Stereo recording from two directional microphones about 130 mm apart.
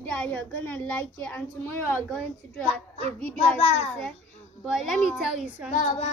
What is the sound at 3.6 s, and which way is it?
Female singing, 55° left (ahead or behind).